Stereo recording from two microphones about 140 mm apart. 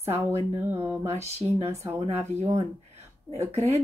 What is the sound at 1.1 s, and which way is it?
A woman's voice, 50° right (ahead or behind).